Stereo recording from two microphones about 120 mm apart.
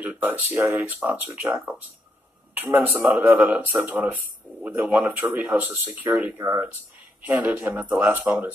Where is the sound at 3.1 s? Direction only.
15° right (ahead or behind).